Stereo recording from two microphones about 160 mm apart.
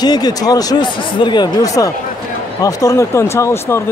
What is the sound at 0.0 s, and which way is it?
Speech, 25° left (ahead or behind).